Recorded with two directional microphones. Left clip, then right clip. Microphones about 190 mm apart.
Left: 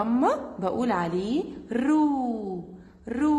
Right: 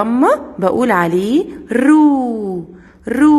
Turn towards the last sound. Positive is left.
turn(degrees=-35)  # may be behind; listen again after turning